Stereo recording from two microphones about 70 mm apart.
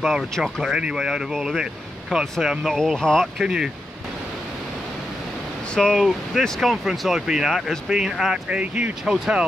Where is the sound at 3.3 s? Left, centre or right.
Centre.